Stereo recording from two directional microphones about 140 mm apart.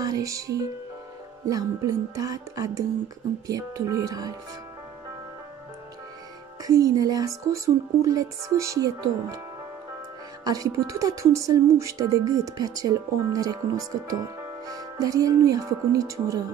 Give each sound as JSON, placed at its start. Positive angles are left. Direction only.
{"t": 0.0, "sound": "speech", "side_deg": -25}
{"t": 6.6, "sound": "speech", "side_deg": -25}
{"t": 10.4, "sound": "speech", "side_deg": -25}